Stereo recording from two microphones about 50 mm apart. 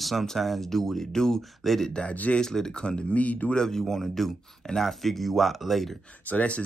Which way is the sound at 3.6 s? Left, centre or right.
Centre.